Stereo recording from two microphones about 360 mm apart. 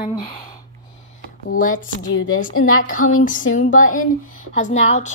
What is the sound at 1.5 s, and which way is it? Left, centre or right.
A woman's voice, left.